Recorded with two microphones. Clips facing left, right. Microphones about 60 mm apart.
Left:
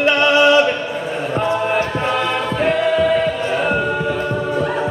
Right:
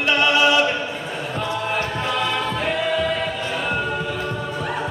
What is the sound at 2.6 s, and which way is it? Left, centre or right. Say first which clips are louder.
Choir: left 9 dB; centre.